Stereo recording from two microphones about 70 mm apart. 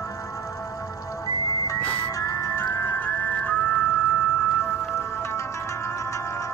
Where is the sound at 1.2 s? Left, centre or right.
Left.